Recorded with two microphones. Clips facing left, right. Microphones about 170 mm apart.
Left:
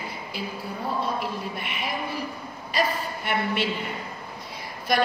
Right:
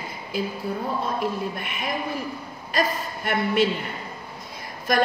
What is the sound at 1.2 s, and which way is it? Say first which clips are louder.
A woman's voice: right 4 dB; 45° right (ahead or behind).